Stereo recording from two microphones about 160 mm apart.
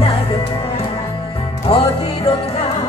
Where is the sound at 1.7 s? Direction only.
35° left (ahead or behind).